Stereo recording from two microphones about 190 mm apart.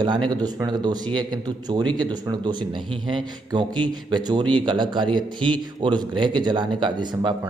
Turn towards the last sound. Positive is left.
turn(degrees=-25)  # may be behind; listen again after turning